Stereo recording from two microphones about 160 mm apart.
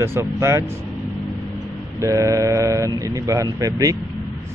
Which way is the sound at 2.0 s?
20° right (ahead or behind).